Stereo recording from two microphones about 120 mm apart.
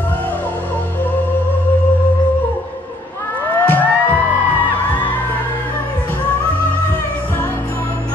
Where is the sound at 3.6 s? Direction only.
15° left (ahead or behind).